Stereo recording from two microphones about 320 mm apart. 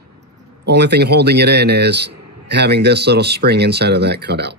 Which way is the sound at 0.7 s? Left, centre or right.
Right.